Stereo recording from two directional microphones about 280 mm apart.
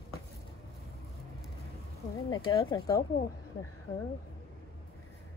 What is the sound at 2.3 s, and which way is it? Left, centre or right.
Speech, centre.